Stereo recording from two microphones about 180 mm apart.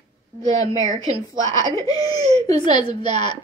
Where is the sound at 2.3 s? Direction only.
35° right (ahead or behind).